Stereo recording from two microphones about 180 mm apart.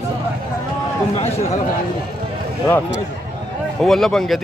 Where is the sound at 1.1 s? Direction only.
35° left (ahead or behind).